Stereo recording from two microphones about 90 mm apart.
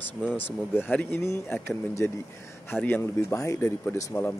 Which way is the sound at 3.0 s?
35° left (ahead or behind).